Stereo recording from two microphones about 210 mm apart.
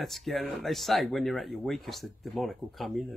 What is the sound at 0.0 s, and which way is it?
Speech, centre (ahead or behind).